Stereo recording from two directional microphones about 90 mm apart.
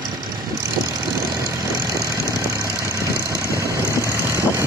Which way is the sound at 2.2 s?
35° right (ahead or behind).